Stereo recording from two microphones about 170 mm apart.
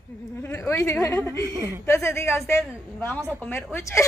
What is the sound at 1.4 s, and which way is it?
Speech, 20° right (ahead or behind).